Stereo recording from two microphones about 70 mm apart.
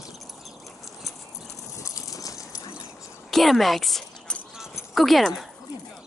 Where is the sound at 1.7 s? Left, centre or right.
Left.